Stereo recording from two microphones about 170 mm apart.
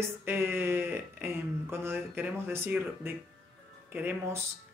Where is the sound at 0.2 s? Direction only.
15° right (ahead or behind).